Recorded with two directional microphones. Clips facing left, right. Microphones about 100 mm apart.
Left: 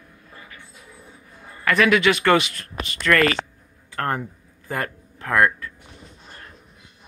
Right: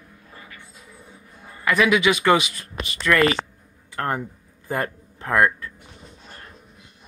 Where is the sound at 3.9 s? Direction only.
15° right (ahead or behind).